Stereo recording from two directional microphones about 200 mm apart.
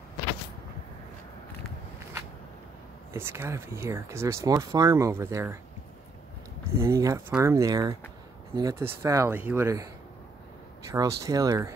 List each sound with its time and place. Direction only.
3.1 s speech: 10° right (ahead or behind)
6.8 s speech: 15° right (ahead or behind)
10.9 s speech: 15° right (ahead or behind)